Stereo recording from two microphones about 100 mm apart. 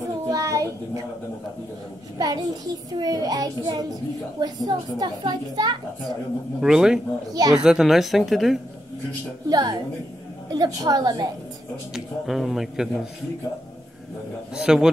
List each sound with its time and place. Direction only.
0.3 s child singing: 35° right (ahead or behind)
2.1 s a child's voice: 40° right (ahead or behind)
6.6 s a woman's voice: 5° right (ahead or behind)
9.5 s a child's voice: 40° right (ahead or behind)
11.9 s a woman's voice: 5° right (ahead or behind)
14.5 s a man's voice: 5° right (ahead or behind)